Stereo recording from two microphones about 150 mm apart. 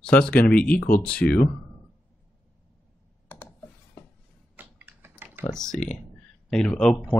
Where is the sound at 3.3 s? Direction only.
15° left (ahead or behind).